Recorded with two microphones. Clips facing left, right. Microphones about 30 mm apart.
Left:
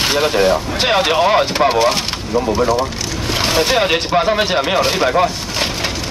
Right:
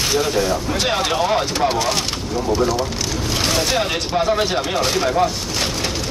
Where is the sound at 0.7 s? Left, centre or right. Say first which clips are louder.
Left 3 dB; left.